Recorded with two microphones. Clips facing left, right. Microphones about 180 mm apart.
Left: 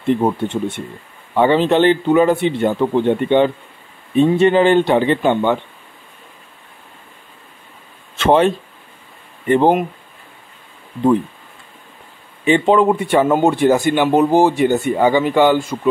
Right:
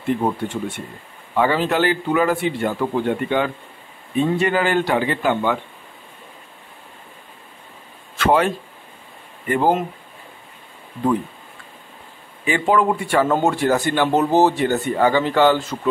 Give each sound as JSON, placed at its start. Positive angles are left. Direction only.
{"t": 0.2, "sound": "a man's voice", "side_deg": 25}
{"t": 8.2, "sound": "a man's voice", "side_deg": 25}
{"t": 12.4, "sound": "speech", "side_deg": 25}